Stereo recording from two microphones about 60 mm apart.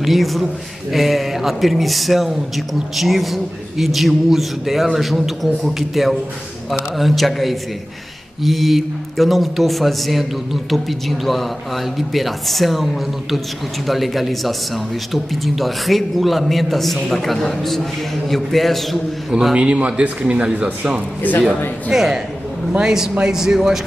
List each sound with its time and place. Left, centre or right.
0.0 s speech: centre
19.3 s speech: centre
21.2 s speech: left
21.9 s speech: centre